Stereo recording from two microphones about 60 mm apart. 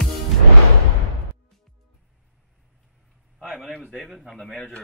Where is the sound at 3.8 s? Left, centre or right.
Right.